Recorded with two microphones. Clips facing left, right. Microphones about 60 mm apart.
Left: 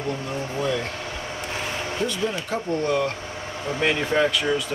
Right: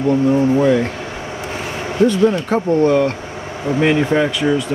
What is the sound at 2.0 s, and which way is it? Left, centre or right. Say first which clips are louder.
Speech: right 14 dB; centre.